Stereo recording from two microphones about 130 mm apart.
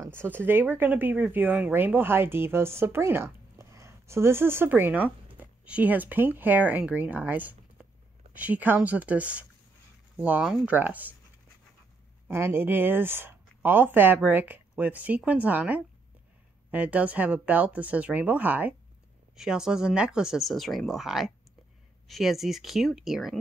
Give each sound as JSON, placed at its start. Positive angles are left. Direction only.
{"t": 0.0, "sound": "a sound", "side_deg": -20}
{"t": 0.4, "sound": "speech", "side_deg": -15}
{"t": 12.3, "sound": "speech", "side_deg": -20}